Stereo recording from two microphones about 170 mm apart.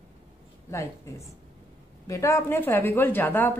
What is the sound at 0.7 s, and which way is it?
A woman's voice, 20° left (ahead or behind).